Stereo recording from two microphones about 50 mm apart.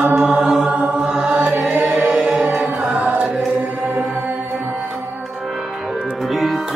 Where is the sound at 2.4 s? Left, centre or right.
Right.